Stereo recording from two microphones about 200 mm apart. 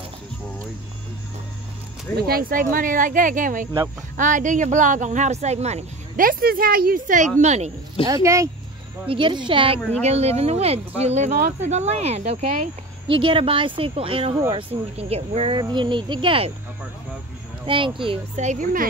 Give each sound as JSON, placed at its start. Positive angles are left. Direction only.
{"t": 2.1, "sound": "speech", "side_deg": -50}
{"t": 8.1, "sound": "speech", "side_deg": -15}
{"t": 9.0, "sound": "a woman's voice", "side_deg": -25}
{"t": 17.6, "sound": "speech", "side_deg": -25}